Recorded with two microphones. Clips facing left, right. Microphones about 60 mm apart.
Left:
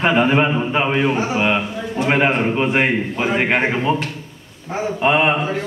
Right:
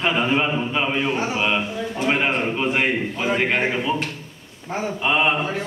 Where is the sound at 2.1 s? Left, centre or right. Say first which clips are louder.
Left 5 dB; left.